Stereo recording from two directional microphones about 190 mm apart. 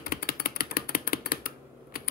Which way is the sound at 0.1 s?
50° left (ahead or behind).